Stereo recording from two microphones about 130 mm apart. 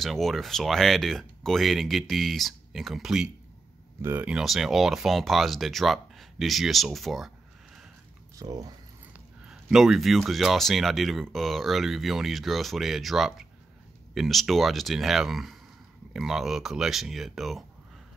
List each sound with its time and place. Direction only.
0.0 s speech: centre (ahead or behind)
4.0 s speech: 15° right (ahead or behind)
8.4 s speech: 30° right (ahead or behind)
9.5 s speech: 5° right (ahead or behind)